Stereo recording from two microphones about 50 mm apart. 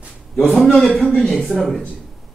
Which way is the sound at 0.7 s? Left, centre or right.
Centre.